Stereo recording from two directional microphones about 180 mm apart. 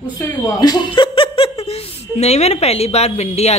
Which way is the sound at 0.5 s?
20° left (ahead or behind).